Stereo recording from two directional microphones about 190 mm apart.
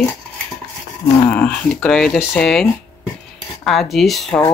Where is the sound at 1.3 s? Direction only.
5° left (ahead or behind).